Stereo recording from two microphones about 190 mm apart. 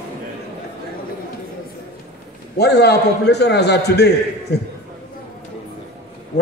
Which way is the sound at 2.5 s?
60° left (ahead or behind).